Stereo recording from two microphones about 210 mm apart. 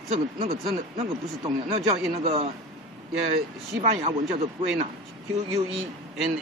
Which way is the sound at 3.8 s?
30° right (ahead or behind).